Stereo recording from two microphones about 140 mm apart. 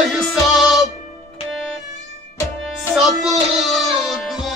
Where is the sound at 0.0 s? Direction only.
Centre (ahead or behind).